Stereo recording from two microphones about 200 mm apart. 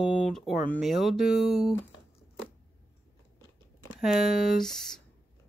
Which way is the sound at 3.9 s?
Centre (ahead or behind).